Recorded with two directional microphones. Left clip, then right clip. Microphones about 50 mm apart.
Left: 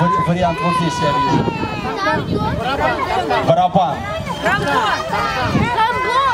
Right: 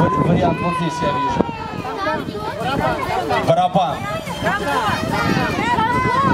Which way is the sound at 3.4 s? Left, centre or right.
Right.